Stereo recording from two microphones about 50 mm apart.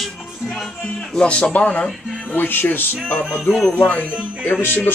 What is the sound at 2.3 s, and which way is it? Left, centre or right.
Speech, left.